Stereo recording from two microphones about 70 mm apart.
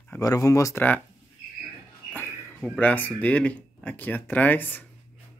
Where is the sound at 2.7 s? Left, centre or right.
Left.